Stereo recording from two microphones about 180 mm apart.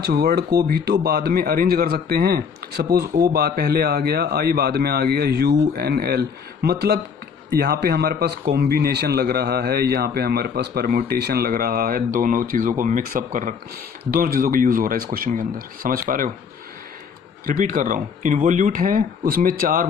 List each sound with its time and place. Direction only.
0.0 s speech: 60° right (ahead or behind)
17.5 s speech: 50° right (ahead or behind)